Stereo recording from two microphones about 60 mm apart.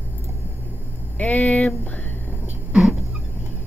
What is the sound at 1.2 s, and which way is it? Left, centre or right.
Speech, left.